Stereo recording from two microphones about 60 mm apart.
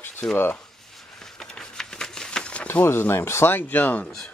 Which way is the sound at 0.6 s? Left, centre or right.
Centre.